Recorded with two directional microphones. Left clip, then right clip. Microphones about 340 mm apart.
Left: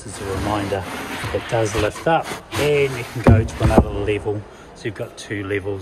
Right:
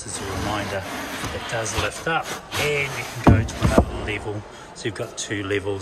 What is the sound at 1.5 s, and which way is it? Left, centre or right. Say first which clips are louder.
Speech: left 5 dB; centre.